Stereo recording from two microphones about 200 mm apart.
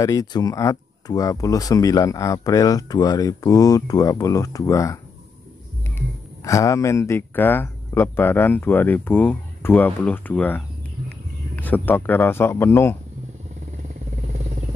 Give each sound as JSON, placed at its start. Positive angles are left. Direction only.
{"t": 0.0, "sound": "speech", "side_deg": 20}
{"t": 5.9, "sound": "speech", "side_deg": 15}